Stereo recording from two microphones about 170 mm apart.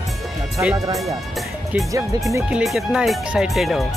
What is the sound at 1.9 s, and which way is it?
Speech, 20° right (ahead or behind).